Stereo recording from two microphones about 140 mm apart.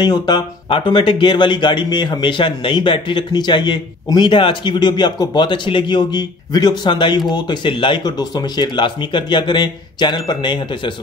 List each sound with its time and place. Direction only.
0.0 s speech: 30° left (ahead or behind)